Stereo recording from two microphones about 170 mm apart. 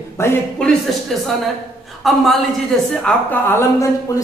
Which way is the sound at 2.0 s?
Centre (ahead or behind).